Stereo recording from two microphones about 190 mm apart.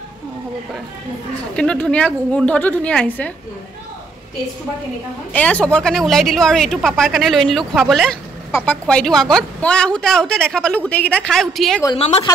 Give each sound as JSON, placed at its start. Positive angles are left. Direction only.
{"t": 1.6, "sound": "a woman's voice", "side_deg": 5}
{"t": 5.3, "sound": "a woman's voice", "side_deg": 5}
{"t": 8.5, "sound": "a woman's voice", "side_deg": 15}
{"t": 8.8, "sound": "a woman's voice", "side_deg": 5}
{"t": 12.0, "sound": "a woman's voice", "side_deg": 30}